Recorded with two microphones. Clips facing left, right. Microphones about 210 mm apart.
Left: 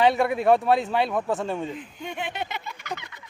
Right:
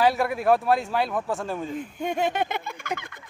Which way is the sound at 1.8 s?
45° right (ahead or behind).